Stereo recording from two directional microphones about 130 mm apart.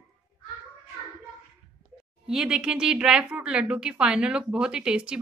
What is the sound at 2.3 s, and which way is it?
Speech, 5° right (ahead or behind).